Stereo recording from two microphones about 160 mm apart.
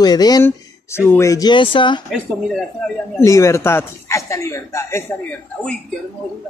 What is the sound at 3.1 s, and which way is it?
Speech, 20° left (ahead or behind).